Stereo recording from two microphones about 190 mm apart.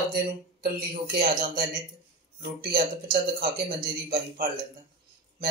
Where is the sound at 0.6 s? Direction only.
50° right (ahead or behind).